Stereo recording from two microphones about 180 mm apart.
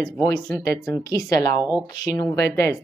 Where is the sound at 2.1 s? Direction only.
20° left (ahead or behind).